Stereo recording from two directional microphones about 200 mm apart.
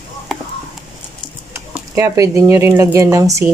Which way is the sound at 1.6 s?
15° right (ahead or behind).